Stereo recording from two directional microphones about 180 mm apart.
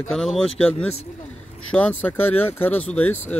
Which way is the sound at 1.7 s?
10° left (ahead or behind).